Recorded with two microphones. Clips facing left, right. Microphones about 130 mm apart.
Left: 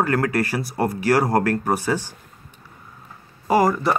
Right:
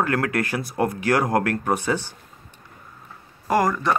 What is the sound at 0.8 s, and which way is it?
Speech, 35° left (ahead or behind).